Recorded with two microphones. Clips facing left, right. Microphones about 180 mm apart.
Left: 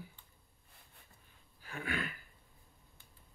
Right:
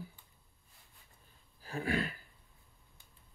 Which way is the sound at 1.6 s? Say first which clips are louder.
Right 5 dB; 35° right (ahead or behind).